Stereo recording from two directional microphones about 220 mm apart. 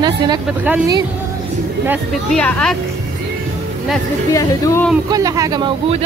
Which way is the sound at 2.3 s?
5° left (ahead or behind).